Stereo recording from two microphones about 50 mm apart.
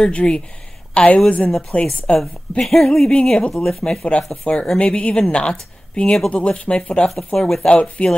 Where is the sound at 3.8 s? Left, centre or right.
Left.